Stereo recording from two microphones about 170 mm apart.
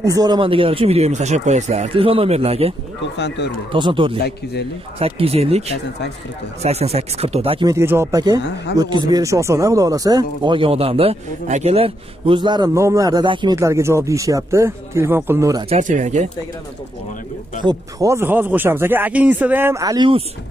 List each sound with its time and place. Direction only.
0.0 s speech: 20° right (ahead or behind); by 2.7 s 35° right (ahead or behind)
3.2 s speech: 90° left
3.7 s speech: 30° right (ahead or behind)
7.6 s speech: 15° right (ahead or behind)
13.6 s speech: 15° right (ahead or behind)
15.7 s speech: 45° right (ahead or behind)
17.6 s speech: 25° right (ahead or behind)